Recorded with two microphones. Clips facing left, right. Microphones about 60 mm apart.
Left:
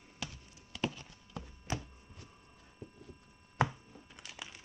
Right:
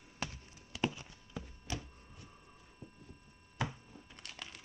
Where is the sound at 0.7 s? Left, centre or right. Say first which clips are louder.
Right 1 dB; centre.